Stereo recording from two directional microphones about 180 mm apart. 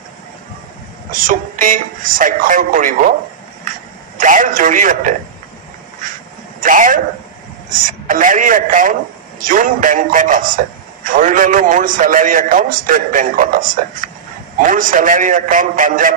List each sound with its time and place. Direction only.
1.1 s a man's voice: 50° right (ahead or behind)
4.2 s a man's voice: 45° right (ahead or behind)
6.6 s a man's voice: 50° right (ahead or behind)